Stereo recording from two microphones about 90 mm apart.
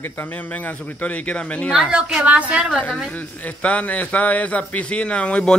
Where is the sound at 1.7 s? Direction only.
10° right (ahead or behind).